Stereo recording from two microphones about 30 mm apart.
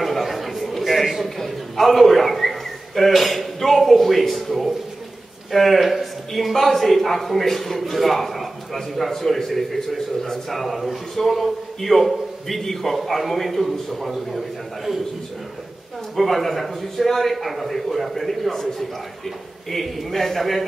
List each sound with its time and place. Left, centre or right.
0.0 s a sound: centre
3.5 s a man's voice: centre
16.2 s a man's voice: centre